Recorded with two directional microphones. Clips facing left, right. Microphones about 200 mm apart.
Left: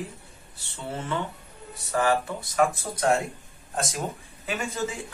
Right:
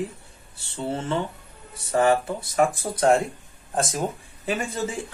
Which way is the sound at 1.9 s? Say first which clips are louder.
Right 4 dB; 25° right (ahead or behind).